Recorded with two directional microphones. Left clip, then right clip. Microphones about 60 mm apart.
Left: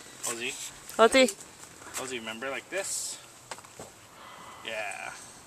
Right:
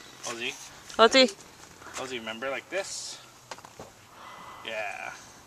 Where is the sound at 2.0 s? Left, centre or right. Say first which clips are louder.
Right 2 dB; right.